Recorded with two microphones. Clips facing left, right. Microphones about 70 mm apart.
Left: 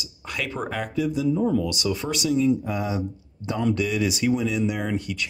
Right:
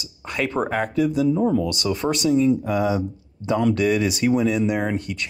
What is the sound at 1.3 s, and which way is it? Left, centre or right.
Speech, right.